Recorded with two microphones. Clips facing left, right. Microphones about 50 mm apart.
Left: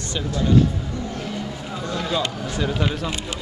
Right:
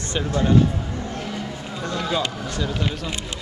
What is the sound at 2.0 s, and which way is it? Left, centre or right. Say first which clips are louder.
Run: even; centre.